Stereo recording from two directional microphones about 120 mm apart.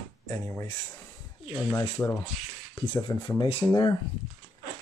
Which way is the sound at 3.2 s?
40° left (ahead or behind).